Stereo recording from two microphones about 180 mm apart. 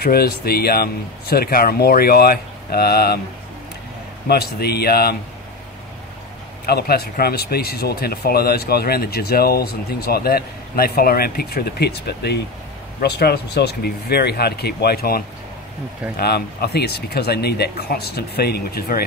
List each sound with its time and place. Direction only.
0.0 s speech: 60° left (ahead or behind)
4.3 s speech: 60° left (ahead or behind)
6.6 s speech: 60° left (ahead or behind)